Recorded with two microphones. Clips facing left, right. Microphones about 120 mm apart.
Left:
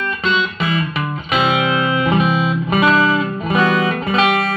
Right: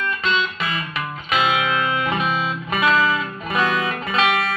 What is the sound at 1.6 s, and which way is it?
Music, 10° left (ahead or behind).